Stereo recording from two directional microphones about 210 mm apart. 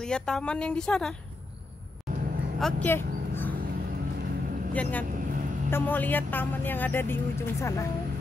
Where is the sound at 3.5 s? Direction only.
45° right (ahead or behind).